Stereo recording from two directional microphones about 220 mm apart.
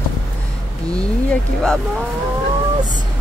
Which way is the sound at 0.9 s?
5° left (ahead or behind).